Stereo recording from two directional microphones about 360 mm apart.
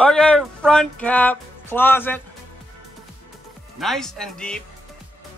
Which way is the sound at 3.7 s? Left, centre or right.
Centre.